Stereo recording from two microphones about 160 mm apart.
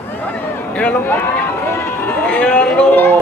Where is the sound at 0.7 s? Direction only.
10° left (ahead or behind).